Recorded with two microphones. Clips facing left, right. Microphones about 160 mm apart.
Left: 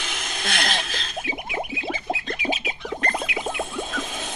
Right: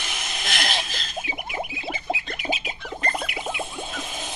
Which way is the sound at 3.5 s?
50° left (ahead or behind).